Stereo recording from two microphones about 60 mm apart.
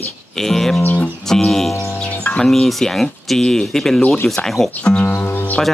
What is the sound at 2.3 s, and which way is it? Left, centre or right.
Speech, centre.